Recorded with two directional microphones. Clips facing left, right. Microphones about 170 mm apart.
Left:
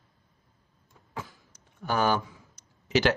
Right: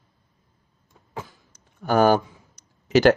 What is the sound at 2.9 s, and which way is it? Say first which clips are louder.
Speech: right 8 dB; 45° right (ahead or behind).